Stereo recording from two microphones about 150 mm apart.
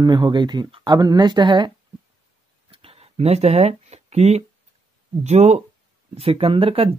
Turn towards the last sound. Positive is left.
turn(degrees=-40)  # may be behind; listen again after turning